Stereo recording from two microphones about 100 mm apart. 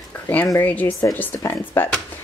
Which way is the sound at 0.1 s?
15° left (ahead or behind).